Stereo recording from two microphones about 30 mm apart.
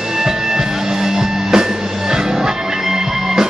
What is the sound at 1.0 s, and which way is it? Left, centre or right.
Music, centre.